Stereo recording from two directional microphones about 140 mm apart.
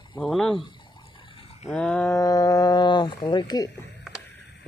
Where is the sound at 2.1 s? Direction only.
25° left (ahead or behind).